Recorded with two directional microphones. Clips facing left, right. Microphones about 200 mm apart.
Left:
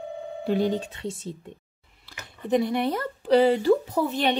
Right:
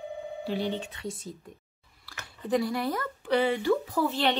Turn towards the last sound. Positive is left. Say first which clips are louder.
# left 2 dB
turn(degrees=20)  # may be behind; listen again after turning